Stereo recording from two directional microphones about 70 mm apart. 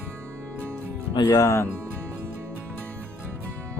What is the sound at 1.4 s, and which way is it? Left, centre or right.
Speech, left.